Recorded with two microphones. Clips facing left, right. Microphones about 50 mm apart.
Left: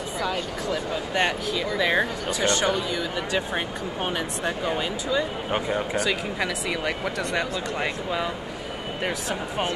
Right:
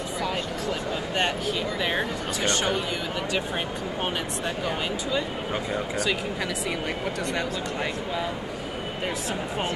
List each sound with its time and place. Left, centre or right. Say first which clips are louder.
2.0 s speech: left 3 dB; centre